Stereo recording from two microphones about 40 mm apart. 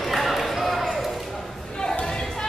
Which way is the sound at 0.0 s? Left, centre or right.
Centre.